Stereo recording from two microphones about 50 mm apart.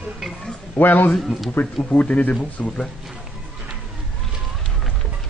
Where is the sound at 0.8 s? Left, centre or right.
Left.